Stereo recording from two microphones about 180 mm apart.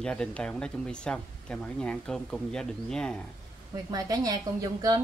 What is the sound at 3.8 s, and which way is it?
A woman's voice, 20° right (ahead or behind).